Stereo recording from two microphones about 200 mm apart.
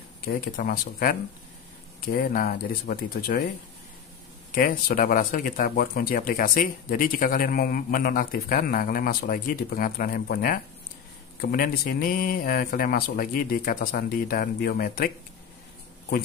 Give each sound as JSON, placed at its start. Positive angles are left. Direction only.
{"t": 0.2, "sound": "speech", "side_deg": 45}
{"t": 4.5, "sound": "speech", "side_deg": 45}